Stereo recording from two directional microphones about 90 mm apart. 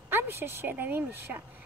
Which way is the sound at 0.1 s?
25° right (ahead or behind).